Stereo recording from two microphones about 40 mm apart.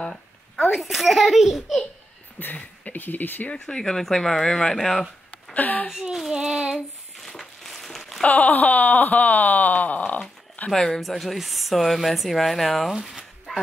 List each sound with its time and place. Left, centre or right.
0.6 s speech: centre
2.4 s speech: left
3.5 s speech: centre
5.5 s a woman's voice: left
6.3 s child singing: centre
7.2 s a sound: centre
8.2 s wail: left
10.7 s speech: centre
13.5 s a sound: centre